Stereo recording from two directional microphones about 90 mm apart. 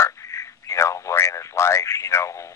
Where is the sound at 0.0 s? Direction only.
30° left (ahead or behind).